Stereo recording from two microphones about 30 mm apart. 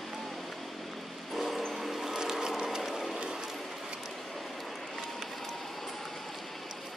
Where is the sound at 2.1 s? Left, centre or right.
Centre.